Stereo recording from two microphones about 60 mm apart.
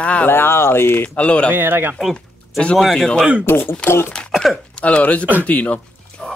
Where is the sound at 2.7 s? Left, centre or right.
Centre.